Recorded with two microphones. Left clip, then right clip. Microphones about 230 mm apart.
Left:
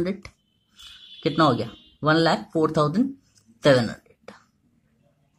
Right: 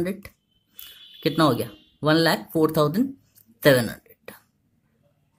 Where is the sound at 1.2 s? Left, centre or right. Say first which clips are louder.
Left 1 dB; centre.